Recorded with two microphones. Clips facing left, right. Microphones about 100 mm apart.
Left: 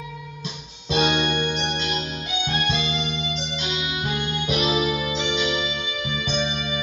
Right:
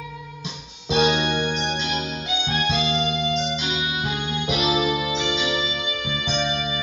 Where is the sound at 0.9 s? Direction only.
10° right (ahead or behind).